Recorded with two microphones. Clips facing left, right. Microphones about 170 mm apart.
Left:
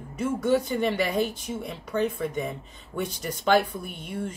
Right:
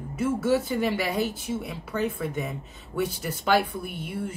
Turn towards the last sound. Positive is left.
turn(degrees=-10)  # may be behind; listen again after turning